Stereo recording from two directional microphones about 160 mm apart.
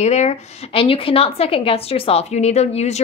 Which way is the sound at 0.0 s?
45° left (ahead or behind).